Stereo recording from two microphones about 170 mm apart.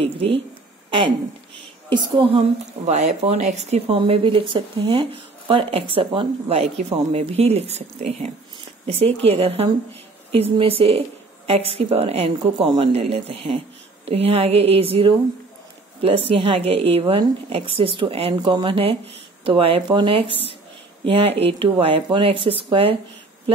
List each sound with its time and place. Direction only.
0.8 s a woman's voice: 30° right (ahead or behind)